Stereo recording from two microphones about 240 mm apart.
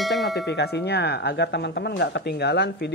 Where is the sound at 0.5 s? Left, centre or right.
Left.